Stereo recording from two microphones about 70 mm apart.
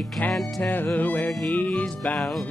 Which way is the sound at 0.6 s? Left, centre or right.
Left.